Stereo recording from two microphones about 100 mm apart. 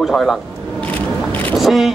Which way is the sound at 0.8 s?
15° left (ahead or behind).